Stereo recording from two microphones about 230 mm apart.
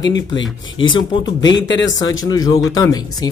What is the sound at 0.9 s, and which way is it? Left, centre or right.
Speech, centre.